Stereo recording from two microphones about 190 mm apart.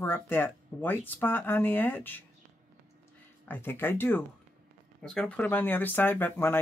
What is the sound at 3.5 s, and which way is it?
Speech, 10° left (ahead or behind).